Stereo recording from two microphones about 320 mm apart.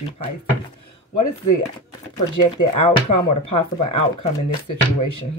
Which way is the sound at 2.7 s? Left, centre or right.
Left.